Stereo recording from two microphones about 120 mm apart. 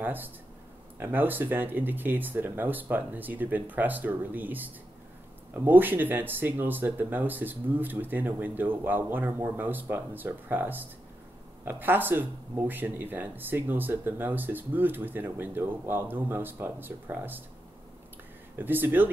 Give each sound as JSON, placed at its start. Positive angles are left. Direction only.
{"t": 0.0, "sound": "speech", "side_deg": -15}
{"t": 18.6, "sound": "speech", "side_deg": -15}